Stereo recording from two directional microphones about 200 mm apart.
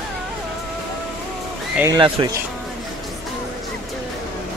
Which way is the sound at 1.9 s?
25° right (ahead or behind).